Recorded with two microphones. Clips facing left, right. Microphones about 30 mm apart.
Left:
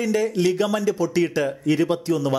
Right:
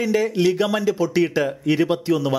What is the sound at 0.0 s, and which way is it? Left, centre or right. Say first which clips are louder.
Speech: right 2 dB; centre.